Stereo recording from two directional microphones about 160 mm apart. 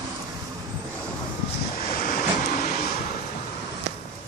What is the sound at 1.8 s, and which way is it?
Vehicle, 60° left (ahead or behind).